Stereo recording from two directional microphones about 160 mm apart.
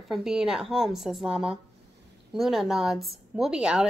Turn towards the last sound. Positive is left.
turn(degrees=-5)  # may be behind; listen again after turning